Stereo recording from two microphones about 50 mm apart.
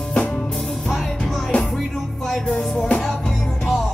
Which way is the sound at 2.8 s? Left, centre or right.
Centre.